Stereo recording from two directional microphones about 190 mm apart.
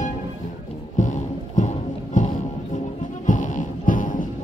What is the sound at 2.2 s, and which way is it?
Music, 40° left (ahead or behind).